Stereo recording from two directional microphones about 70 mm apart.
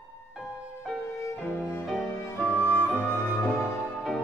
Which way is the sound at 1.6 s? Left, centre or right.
Left.